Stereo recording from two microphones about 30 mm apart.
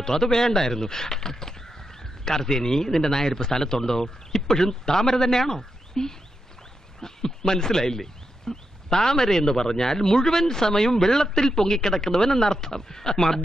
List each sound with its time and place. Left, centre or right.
0.0 s speech: centre